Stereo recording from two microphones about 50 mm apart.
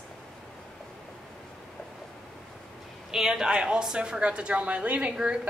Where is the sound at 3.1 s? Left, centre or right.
Centre.